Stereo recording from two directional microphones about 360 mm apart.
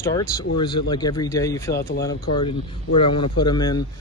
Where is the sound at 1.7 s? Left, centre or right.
Left.